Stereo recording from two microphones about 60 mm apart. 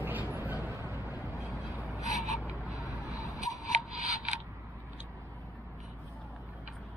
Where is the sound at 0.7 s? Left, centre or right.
Right.